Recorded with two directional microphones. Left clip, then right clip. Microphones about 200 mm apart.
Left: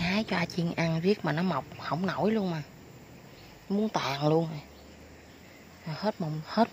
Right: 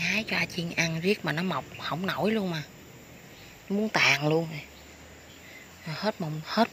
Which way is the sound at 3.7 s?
Centre (ahead or behind).